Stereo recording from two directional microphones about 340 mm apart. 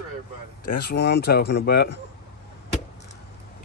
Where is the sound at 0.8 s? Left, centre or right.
Left.